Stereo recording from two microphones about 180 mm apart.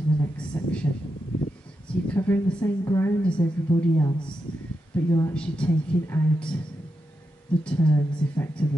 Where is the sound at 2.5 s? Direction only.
15° left (ahead or behind).